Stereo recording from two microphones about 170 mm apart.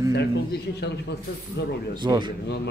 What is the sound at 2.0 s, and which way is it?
Speech, 25° right (ahead or behind).